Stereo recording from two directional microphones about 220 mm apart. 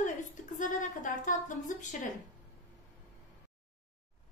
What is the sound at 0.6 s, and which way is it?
A woman's voice, 35° left (ahead or behind).